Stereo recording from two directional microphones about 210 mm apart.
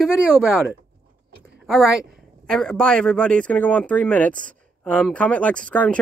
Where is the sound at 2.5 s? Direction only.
5° left (ahead or behind).